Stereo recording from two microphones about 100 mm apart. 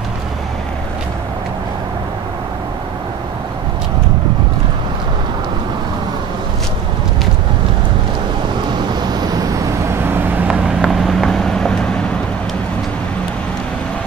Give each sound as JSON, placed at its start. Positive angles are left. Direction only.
{"t": 9.8, "sound": "vehicle", "side_deg": -20}
{"t": 10.5, "sound": "vehicle", "side_deg": 0}